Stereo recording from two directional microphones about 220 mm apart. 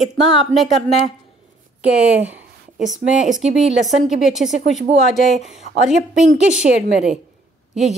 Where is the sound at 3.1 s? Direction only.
35° left (ahead or behind).